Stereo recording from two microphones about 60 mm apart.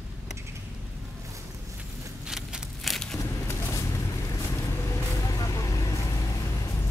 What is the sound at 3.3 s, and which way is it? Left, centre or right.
Horse, left.